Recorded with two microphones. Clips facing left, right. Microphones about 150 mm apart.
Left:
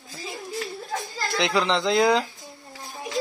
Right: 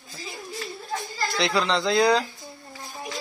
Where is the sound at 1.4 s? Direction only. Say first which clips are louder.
Left 1 dB; 20° left (ahead or behind).